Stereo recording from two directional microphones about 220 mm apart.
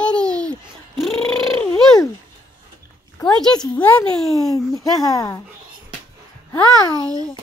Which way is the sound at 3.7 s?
5° left (ahead or behind).